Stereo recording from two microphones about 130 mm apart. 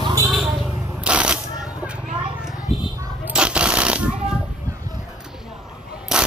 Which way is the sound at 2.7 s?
50° left (ahead or behind).